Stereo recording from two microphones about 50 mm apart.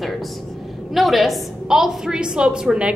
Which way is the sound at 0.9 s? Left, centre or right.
Centre.